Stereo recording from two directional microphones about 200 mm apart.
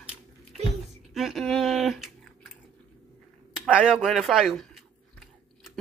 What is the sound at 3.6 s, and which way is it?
Clicking, 5° right (ahead or behind).